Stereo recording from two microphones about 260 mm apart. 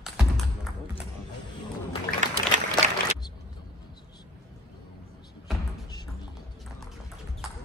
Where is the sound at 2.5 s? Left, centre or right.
Right.